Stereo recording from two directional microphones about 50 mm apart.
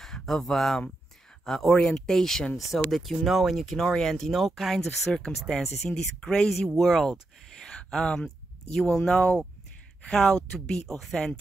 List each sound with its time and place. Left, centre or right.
0.0 s speech: centre
1.7 s speech: centre
3.8 s speech: centre
5.1 s speech: centre
6.7 s speech: centre
7.1 s a sound: centre
8.7 s speech: centre
10.9 s speech: centre